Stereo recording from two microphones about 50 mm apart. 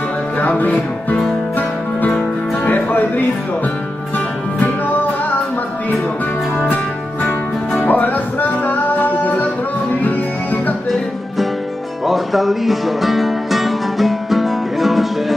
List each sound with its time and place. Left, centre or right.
0.4 s music: left
2.0 s music: left
4.6 s music: left
7.8 s music: left
12.1 s music: centre